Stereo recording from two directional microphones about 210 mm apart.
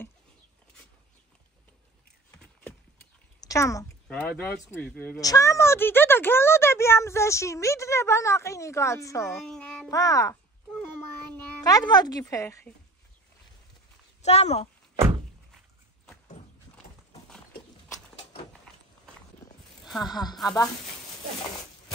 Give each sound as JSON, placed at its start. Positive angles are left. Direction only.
{"t": 3.4, "sound": "speech", "side_deg": 15}
{"t": 9.4, "sound": "speech", "side_deg": 5}
{"t": 9.8, "sound": "a sound", "side_deg": 15}
{"t": 11.3, "sound": "a woman's voice", "side_deg": 15}
{"t": 14.2, "sound": "speech", "side_deg": 30}
{"t": 20.0, "sound": "speech", "side_deg": 20}